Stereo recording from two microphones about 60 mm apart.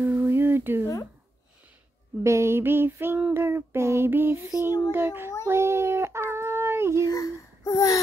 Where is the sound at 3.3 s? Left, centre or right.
Right.